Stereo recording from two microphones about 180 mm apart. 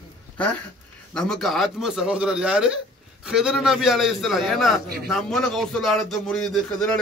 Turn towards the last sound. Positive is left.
turn(degrees=5)  # may be behind; listen again after turning